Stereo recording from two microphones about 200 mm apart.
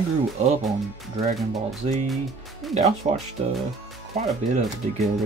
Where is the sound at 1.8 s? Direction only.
25° right (ahead or behind).